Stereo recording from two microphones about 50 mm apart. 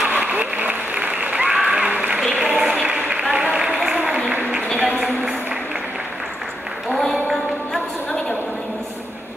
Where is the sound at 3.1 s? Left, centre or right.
Right.